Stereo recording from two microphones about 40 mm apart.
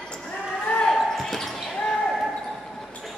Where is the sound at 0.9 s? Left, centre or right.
Centre.